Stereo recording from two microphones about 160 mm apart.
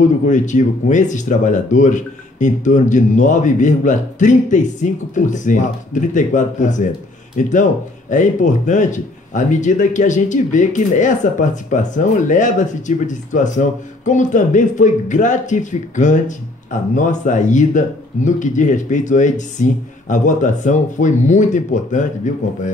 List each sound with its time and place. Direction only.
0.0 s speech: 50° left (ahead or behind)